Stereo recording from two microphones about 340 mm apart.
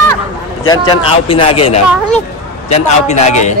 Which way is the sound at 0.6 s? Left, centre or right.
Centre.